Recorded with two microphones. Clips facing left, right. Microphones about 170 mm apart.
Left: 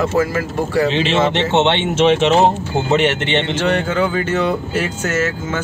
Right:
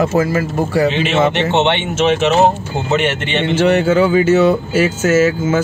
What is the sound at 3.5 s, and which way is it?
Speech, 10° right (ahead or behind).